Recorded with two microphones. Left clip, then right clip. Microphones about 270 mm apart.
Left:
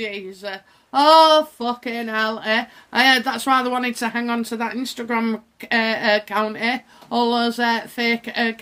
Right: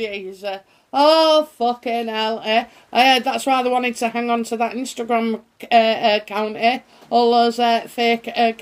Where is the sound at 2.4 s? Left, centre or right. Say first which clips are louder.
Right 2 dB; left.